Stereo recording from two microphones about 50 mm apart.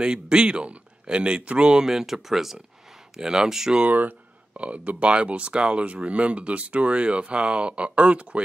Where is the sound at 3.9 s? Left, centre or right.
Right.